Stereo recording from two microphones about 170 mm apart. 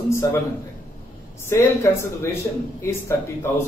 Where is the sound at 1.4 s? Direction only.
15° left (ahead or behind).